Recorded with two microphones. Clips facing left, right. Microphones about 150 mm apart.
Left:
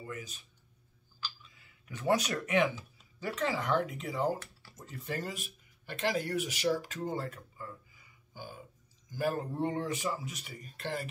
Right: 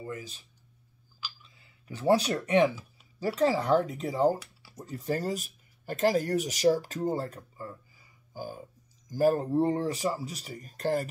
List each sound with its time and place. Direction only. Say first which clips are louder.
0.0 s speech: right 4 dB; 30° right (ahead or behind)
1.6 s speech: right 6 dB; 30° right (ahead or behind)